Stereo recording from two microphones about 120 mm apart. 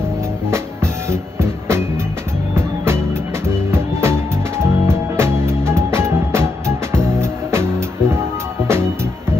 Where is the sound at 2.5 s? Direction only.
20° right (ahead or behind).